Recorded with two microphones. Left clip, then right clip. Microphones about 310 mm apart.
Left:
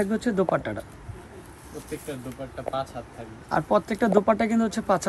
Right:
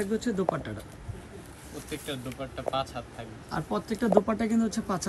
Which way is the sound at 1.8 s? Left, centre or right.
Centre.